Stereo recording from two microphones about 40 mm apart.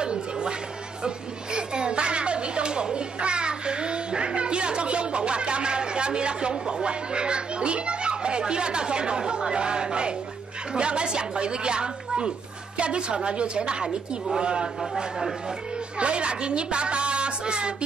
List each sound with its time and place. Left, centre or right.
0.0 s music: right
1.0 s a sound: right
10.7 s a woman's voice: right
13.8 s a woman's voice: centre
14.4 s a woman's voice: right
16.0 s a woman's voice: right